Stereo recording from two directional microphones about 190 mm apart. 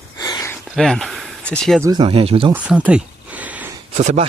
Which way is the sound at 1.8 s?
25° right (ahead or behind).